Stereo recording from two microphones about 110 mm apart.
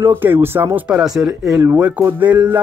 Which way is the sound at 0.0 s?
20° right (ahead or behind).